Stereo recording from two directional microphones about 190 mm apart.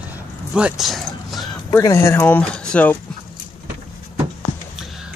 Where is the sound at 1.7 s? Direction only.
15° left (ahead or behind).